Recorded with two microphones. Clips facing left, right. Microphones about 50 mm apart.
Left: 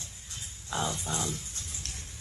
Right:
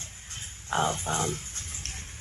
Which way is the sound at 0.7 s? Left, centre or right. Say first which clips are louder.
Right 5 dB; right.